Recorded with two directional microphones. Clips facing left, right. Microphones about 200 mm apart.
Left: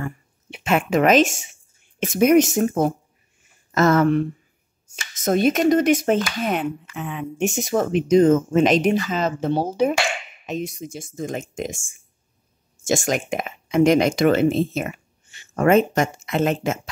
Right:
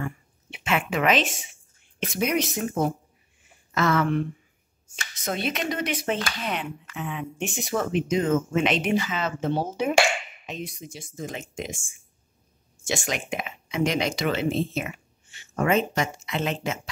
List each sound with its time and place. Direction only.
0.5 s speech: 40° left (ahead or behind)